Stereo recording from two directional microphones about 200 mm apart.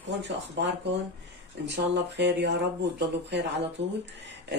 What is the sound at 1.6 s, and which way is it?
Speech, 60° right (ahead or behind).